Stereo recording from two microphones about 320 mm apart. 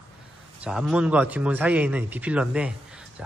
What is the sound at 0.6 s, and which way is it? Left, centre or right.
A man's voice, centre.